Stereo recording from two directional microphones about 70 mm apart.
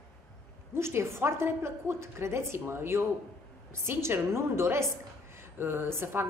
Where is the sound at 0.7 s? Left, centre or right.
Right.